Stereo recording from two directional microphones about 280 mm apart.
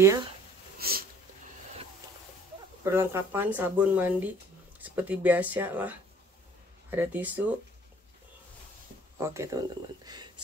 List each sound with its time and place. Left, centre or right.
0.7 s sniff: right
2.8 s speech: centre
9.2 s speech: centre